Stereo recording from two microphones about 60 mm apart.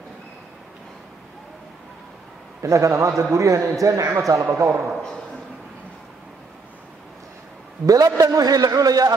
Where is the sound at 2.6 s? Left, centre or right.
Right.